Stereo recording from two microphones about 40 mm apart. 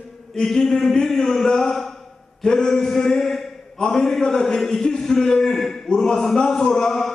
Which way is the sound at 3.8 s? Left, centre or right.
Centre.